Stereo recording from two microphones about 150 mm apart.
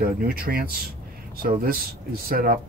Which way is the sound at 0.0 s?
80° right.